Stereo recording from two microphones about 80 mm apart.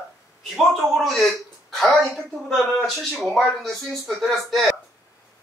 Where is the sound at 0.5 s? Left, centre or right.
Centre.